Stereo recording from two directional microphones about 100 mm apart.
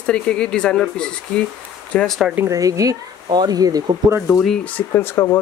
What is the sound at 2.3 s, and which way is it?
Speech, 35° right (ahead or behind).